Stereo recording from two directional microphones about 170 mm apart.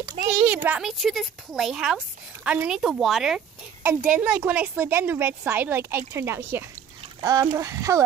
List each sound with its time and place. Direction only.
0.3 s a child's voice: 10° right (ahead or behind)